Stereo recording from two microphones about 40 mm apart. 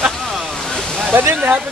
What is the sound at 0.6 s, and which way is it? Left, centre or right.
Waterfall, centre.